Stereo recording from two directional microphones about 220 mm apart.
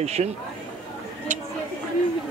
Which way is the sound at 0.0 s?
30° right (ahead or behind).